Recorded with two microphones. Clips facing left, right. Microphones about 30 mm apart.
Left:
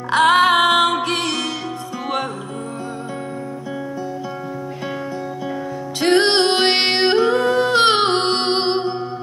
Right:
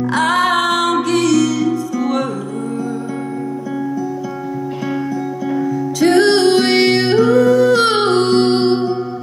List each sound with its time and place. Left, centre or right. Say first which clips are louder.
0.1 s music: left 3 dB; left
5.9 s music: right 3 dB; left
6.7 s music: right 3 dB; left